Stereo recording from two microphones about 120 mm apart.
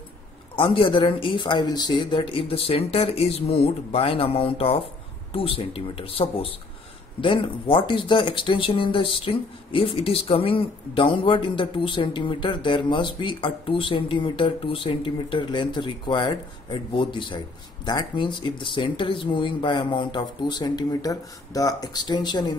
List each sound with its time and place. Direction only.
0.6 s speech: 50° left (ahead or behind)